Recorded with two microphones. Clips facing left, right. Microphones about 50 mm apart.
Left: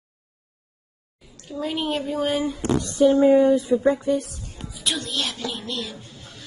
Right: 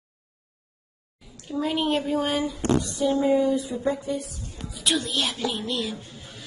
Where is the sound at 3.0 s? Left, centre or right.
Left.